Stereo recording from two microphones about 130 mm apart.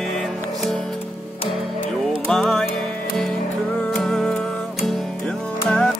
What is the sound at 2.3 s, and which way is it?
Music, centre (ahead or behind).